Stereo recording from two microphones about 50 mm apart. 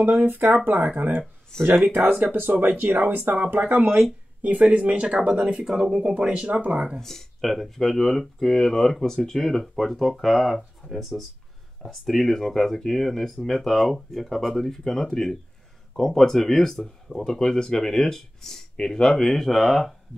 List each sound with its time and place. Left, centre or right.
0.0 s speech: right
1.5 s speech: centre
2.0 s speech: centre
2.3 s speech: right
3.8 s speech: right
7.0 s speech: centre